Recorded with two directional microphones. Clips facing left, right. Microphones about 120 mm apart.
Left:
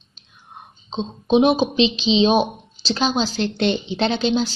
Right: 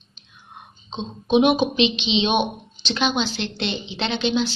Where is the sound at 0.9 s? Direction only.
35° left (ahead or behind).